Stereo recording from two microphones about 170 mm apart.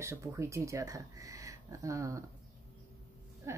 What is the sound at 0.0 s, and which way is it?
Speech, 15° right (ahead or behind).